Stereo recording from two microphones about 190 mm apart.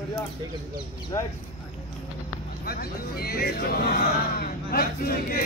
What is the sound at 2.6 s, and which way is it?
Speech, 55° left (ahead or behind).